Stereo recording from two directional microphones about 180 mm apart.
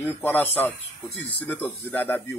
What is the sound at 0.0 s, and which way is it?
A man's voice, 10° left (ahead or behind).